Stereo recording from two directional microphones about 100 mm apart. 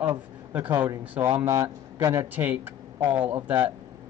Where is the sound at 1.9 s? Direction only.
25° right (ahead or behind).